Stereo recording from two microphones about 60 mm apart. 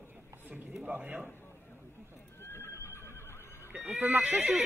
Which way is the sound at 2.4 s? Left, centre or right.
Left.